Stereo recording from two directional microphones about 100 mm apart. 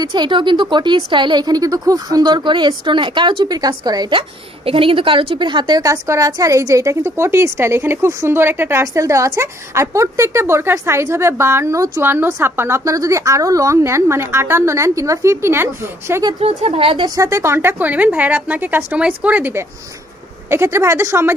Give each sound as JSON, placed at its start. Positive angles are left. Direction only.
{"t": 0.1, "sound": "speech", "side_deg": -50}
{"t": 4.6, "sound": "a woman's voice", "side_deg": -60}
{"t": 16.4, "sound": "a woman's voice", "side_deg": -75}
{"t": 17.0, "sound": "a woman's voice", "side_deg": -35}